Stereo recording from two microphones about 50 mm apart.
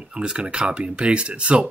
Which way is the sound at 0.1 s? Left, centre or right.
Centre.